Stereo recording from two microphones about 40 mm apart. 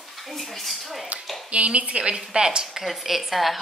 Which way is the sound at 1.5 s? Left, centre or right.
Right.